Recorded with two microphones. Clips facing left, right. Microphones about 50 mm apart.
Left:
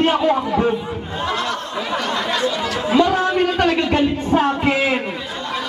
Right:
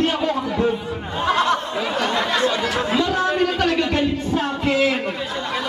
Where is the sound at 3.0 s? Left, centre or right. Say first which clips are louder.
Left 7 dB; centre.